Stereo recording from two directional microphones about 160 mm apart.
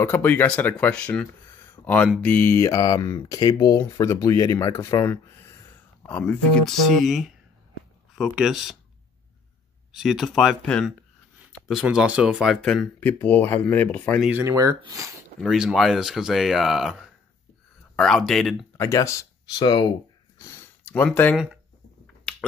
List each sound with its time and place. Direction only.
0.0 s speech: 10° left (ahead or behind)
1.8 s a sound: 15° left (ahead or behind)
2.2 s speech: 15° left (ahead or behind); by 8.7 s centre (ahead or behind)
9.9 s speech: centre (ahead or behind)
14.4 s speech: 20° right (ahead or behind)
15.4 s speech: centre (ahead or behind)
18.8 s speech: 20° left (ahead or behind)
20.3 s a sound: 15° left (ahead or behind)